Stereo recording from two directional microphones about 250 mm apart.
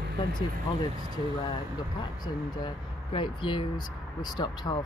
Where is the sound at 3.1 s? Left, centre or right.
Centre.